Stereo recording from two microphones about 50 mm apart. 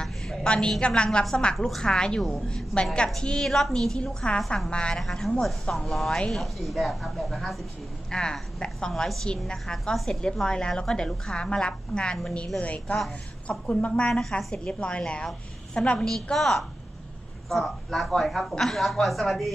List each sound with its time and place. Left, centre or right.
0.0 s a sound: centre
1.4 s a woman's voice: centre
5.0 s a woman's voice: centre
8.1 s a woman's voice: centre
12.5 s a woman's voice: left; by 19.5 s centre